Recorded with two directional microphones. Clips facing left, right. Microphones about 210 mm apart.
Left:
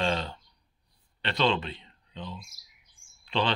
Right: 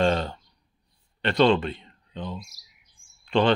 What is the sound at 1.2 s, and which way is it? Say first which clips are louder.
Speech: right 7 dB; 50° right (ahead or behind).